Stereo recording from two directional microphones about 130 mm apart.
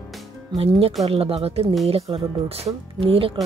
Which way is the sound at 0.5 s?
50° right (ahead or behind).